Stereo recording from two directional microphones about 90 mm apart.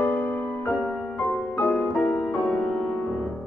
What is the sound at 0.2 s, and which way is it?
Music, 15° left (ahead or behind).